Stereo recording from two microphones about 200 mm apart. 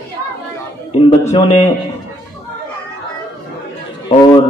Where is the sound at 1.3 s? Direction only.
35° left (ahead or behind).